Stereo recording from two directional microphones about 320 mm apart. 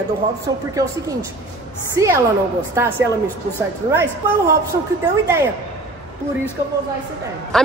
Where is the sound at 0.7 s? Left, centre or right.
Centre.